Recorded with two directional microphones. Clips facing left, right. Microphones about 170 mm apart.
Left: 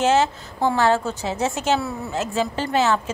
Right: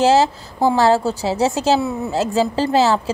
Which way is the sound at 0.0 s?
35° right (ahead or behind).